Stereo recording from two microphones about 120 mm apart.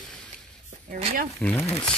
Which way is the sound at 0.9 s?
60° right (ahead or behind).